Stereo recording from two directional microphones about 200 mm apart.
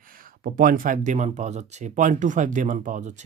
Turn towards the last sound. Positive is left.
turn(degrees=-40)  # may be behind; listen again after turning